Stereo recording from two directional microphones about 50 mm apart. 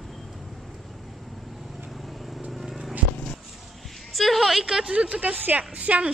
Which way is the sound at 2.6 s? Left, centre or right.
Centre.